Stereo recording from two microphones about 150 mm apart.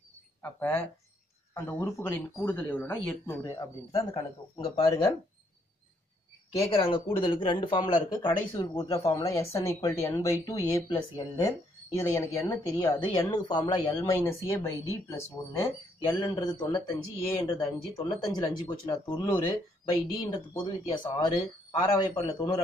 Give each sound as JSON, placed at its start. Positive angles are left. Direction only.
{"t": 0.4, "sound": "speech", "side_deg": 15}
{"t": 3.5, "sound": "speech", "side_deg": 25}
{"t": 6.7, "sound": "speech", "side_deg": 35}
{"t": 13.9, "sound": "speech", "side_deg": 15}
{"t": 16.2, "sound": "speech", "side_deg": 30}